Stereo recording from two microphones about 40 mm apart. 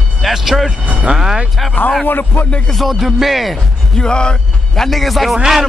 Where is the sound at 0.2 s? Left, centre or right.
Centre.